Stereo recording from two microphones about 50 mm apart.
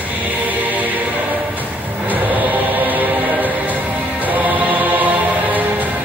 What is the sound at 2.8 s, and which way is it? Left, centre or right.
Music, right.